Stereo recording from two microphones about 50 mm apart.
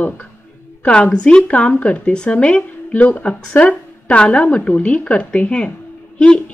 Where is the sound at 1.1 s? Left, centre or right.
Left.